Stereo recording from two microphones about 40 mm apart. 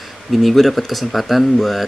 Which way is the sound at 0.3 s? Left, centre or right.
Centre.